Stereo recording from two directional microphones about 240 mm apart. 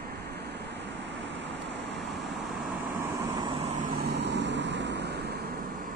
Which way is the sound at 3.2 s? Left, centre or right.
Right.